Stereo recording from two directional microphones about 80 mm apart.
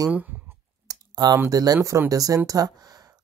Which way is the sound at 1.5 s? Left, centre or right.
Right.